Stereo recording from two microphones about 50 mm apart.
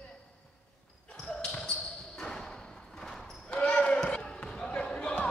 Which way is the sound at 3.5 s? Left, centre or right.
Left.